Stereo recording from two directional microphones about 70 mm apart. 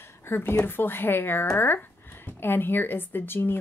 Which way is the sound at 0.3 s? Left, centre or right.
Left.